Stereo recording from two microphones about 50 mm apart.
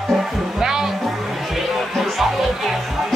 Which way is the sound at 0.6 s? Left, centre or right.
Centre.